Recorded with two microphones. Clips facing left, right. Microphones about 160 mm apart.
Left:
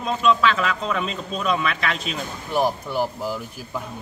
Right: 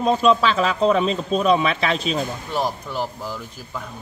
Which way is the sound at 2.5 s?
10° left (ahead or behind).